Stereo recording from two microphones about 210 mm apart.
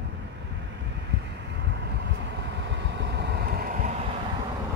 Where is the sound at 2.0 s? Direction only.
55° right (ahead or behind); by 4.1 s 40° right (ahead or behind).